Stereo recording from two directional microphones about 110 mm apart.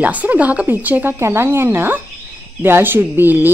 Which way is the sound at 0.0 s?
15° right (ahead or behind).